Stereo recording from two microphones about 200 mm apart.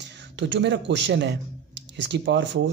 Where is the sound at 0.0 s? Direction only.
60° right (ahead or behind).